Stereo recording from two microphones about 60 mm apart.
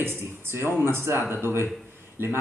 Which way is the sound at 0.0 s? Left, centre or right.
Right.